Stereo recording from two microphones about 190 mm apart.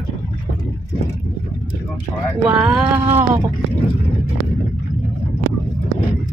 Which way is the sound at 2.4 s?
5° right (ahead or behind).